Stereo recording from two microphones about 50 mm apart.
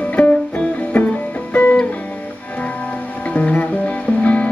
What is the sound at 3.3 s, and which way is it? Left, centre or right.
Music, left.